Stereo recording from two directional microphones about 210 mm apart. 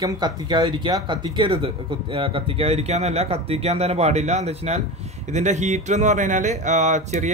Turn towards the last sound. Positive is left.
turn(degrees=-35)  # may be behind; listen again after turning